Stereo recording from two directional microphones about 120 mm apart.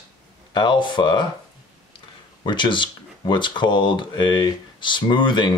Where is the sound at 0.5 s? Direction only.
35° left (ahead or behind).